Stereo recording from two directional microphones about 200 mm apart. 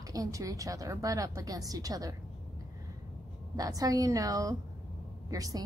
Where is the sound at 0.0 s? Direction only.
15° right (ahead or behind).